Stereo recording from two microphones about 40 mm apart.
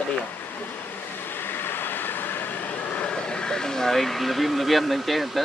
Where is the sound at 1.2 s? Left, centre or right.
Left.